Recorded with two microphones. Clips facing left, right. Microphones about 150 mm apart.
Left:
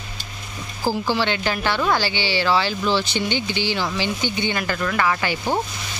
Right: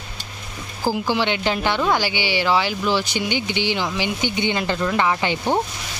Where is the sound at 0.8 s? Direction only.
15° right (ahead or behind).